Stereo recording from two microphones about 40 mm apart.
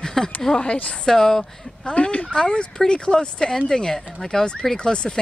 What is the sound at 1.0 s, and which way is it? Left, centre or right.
Speech, centre.